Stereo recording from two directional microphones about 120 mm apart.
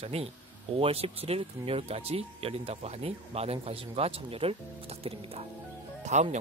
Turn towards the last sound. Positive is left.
turn(degrees=-90)